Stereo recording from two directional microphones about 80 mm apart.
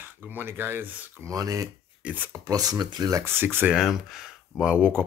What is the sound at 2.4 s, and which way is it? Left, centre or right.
Speech, right.